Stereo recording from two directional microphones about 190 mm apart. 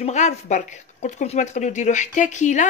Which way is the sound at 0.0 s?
40° left (ahead or behind).